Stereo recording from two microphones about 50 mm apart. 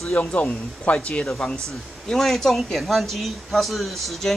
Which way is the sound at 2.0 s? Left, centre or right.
Centre.